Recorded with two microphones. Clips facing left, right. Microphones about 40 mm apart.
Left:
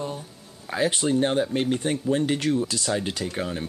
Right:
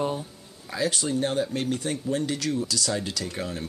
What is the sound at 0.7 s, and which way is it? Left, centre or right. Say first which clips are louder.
Speech: left 4 dB; left.